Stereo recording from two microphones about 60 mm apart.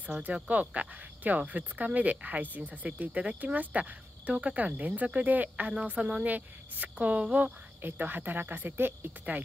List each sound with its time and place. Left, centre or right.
0.3 s speech: right
5.7 s speech: centre
7.4 s speech: right